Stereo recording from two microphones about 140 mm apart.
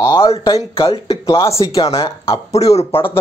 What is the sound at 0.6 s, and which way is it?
Speech, 40° left (ahead or behind).